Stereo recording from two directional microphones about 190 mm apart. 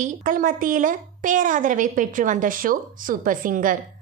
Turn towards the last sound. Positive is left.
turn(degrees=-45)  # may be behind; listen again after turning